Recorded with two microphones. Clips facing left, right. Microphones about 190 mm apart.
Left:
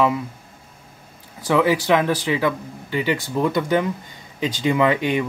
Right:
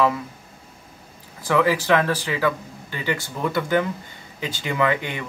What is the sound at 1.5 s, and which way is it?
Speech, 20° left (ahead or behind).